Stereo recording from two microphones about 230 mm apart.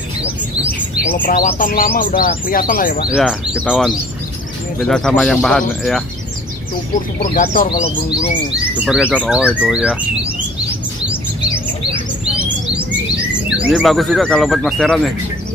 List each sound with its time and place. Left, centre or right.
0.9 s speech: left
3.1 s speech: centre
7.2 s speech: left
8.7 s speech: centre
13.6 s speech: centre